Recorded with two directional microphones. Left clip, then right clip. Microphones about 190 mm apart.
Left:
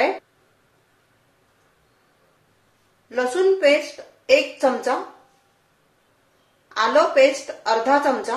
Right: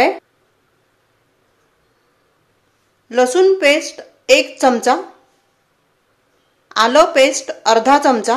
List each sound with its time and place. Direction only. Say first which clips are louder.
3.1 s speech: right 7 dB; 55° right (ahead or behind)
6.7 s speech: right 6 dB; 60° right (ahead or behind)